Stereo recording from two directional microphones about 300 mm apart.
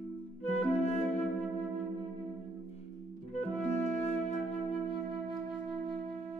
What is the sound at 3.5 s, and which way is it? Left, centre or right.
Flute, left.